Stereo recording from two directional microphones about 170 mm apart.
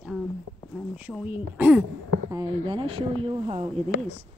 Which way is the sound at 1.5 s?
10° right (ahead or behind).